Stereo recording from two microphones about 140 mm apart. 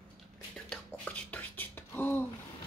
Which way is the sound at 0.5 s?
10° left (ahead or behind).